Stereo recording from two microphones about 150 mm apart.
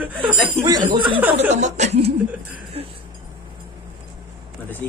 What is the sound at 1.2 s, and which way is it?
Speech, 10° right (ahead or behind).